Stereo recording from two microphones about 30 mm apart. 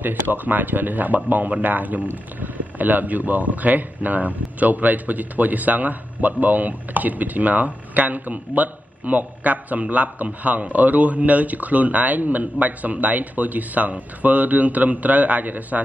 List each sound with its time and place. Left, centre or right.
0.0 s speech: right